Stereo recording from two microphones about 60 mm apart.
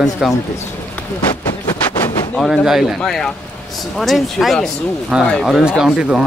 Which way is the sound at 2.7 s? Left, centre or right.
Centre.